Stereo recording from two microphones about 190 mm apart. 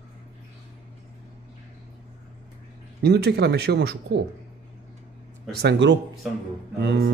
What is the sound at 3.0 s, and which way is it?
Speech, 60° right (ahead or behind).